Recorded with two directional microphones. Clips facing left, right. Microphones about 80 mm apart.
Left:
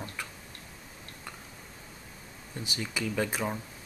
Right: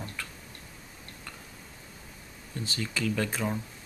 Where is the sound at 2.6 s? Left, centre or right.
Centre.